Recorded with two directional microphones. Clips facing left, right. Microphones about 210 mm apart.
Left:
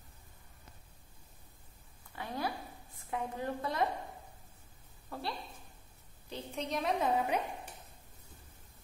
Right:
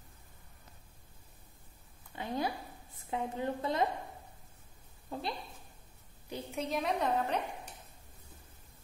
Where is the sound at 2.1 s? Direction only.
20° right (ahead or behind).